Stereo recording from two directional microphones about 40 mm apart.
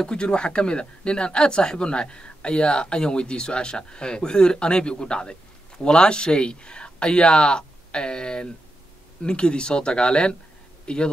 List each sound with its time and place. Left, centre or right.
0.0 s speech: left